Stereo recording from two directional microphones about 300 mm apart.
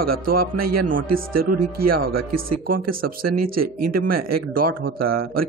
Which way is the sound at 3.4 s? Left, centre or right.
Right.